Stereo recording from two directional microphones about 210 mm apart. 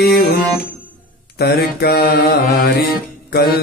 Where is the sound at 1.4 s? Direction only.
50° left (ahead or behind).